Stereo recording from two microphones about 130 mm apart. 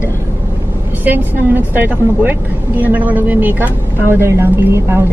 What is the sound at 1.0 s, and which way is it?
Speech, 15° right (ahead or behind).